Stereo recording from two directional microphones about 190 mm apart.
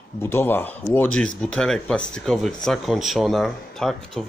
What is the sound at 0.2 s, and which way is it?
Speech, 10° left (ahead or behind).